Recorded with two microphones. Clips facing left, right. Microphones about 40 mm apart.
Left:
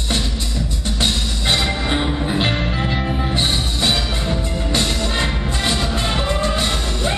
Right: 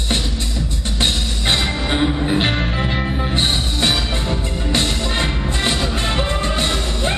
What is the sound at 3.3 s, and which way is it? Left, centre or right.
Music, right.